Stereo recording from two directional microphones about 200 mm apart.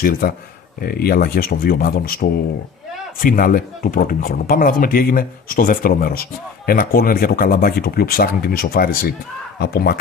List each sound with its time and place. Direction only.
0.2 s speech: 45° left (ahead or behind)